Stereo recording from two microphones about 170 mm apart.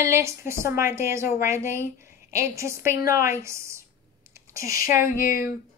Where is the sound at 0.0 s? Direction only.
15° right (ahead or behind).